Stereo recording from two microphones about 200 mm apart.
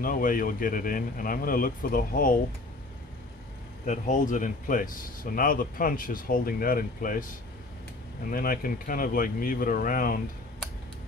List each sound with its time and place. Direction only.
0.0 s speech: 45° left (ahead or behind)
3.8 s speech: 40° left (ahead or behind)
8.3 s speech: 45° left (ahead or behind)